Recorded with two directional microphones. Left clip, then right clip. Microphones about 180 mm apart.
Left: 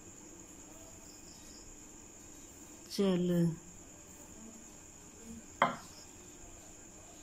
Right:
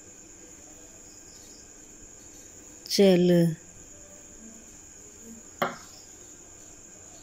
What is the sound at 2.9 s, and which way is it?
Speech, 20° right (ahead or behind).